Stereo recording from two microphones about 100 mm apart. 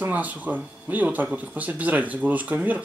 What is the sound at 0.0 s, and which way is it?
Speech, 15° right (ahead or behind).